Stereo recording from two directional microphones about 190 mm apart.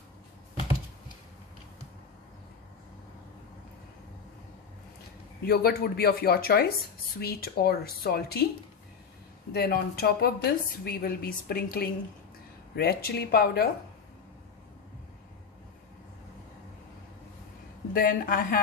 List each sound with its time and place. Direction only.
5.5 s speech: 55° left (ahead or behind)
9.5 s a woman's voice: 55° left (ahead or behind)
17.9 s a woman's voice: 50° left (ahead or behind)